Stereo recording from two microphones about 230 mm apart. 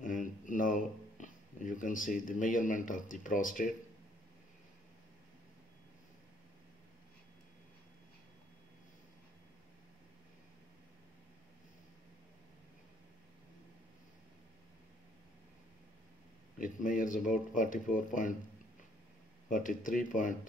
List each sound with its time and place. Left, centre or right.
0.0 s a sound: left
16.5 s speech: left
19.5 s speech: left